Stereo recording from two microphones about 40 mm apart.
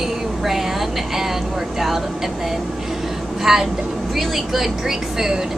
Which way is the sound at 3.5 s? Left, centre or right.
Centre.